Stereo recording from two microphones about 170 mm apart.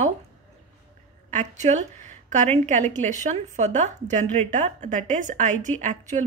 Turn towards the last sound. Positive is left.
turn(degrees=-45)  # may be behind; listen again after turning